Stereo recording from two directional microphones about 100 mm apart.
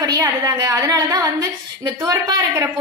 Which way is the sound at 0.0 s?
40° right (ahead or behind).